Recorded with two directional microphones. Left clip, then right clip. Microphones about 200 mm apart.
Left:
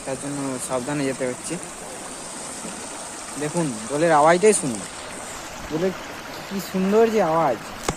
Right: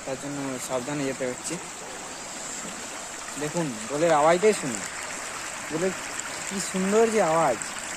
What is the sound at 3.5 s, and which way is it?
Speech, centre (ahead or behind).